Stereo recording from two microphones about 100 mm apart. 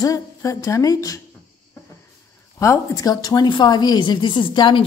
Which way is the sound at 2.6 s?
30° left (ahead or behind).